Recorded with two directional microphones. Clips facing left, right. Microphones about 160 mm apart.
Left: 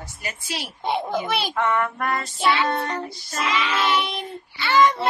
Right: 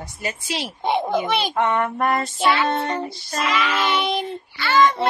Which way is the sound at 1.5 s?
20° right (ahead or behind).